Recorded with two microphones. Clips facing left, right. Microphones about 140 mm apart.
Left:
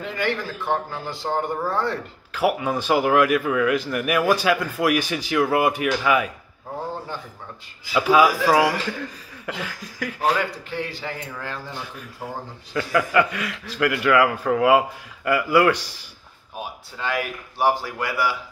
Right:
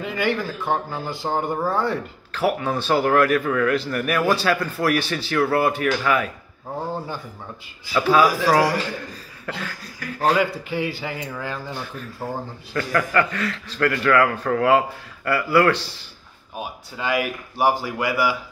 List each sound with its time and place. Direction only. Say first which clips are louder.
0.0 s speech: right 2 dB; 5° right (ahead or behind)
2.3 s a man's voice: even; 10° left (ahead or behind)
7.9 s a man's voice: even; 10° left (ahead or behind)
10.0 s a man's voice: left 3 dB; 90° left
10.3 s a man's voice: right 4 dB; 10° right (ahead or behind)
11.9 s a man's voice: right 4 dB; 10° left (ahead or behind)
16.5 s speech: right 2 dB; 5° right (ahead or behind)